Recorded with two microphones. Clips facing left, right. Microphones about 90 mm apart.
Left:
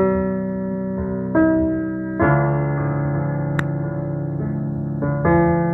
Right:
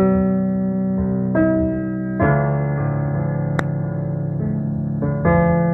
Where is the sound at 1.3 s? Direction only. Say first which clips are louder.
Left 2 dB; 30° left (ahead or behind).